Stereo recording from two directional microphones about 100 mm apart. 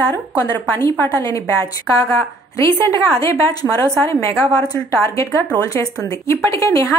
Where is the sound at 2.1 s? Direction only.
25° left (ahead or behind).